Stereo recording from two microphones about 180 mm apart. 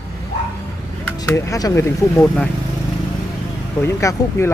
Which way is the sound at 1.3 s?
20° left (ahead or behind).